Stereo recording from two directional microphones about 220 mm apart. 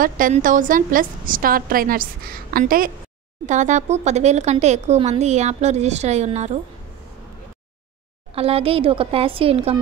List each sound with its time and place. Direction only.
0.0 s speech: 40° right (ahead or behind)
8.3 s a woman's voice: 25° right (ahead or behind)